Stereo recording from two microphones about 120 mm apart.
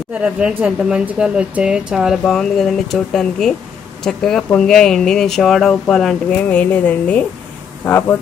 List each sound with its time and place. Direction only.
0.1 s speech: 10° right (ahead or behind); by 8.2 s 15° left (ahead or behind)